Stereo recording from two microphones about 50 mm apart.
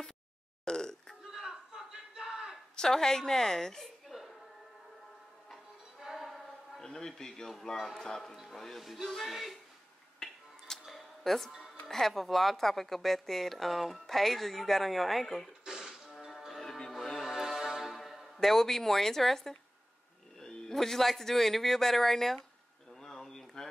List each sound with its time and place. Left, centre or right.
0.7 s burping: centre
1.2 s a sound: centre
2.7 s a woman's voice: centre
5.9 s a sound: centre
6.8 s a man's voice: centre
7.7 s a woman's voice: centre
8.0 s a man's voice: centre
10.1 s music: centre
10.9 s a sound: centre
11.9 s a woman's voice: centre
15.6 s music: centre
20.3 s a woman's voice: centre
23.0 s a sound: centre